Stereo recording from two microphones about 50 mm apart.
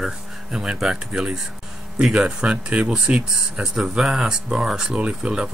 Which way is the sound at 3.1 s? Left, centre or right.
Centre.